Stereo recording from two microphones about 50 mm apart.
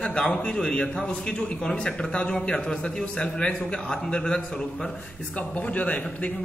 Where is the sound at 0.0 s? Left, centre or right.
Centre.